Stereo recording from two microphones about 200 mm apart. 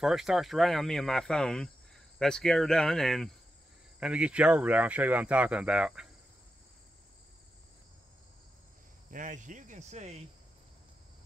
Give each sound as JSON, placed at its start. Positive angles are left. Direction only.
{"t": 0.0, "sound": "speech", "side_deg": 0}
{"t": 9.1, "sound": "speech", "side_deg": -40}